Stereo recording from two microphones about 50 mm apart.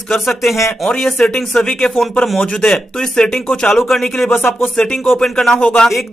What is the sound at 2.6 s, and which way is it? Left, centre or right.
Speech, centre.